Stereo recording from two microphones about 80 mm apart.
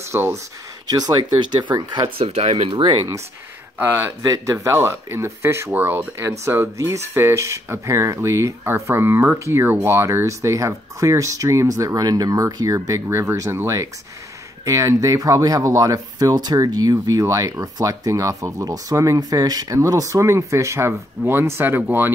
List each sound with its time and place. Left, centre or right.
0.0 s speech: right
0.8 s speech: right
2.8 s speech: right
3.7 s speech: right
4.2 s speech: right
14.6 s speech: right
17.2 s speech: right